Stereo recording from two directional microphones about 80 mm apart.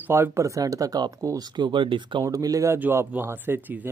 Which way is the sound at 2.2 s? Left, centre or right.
Right.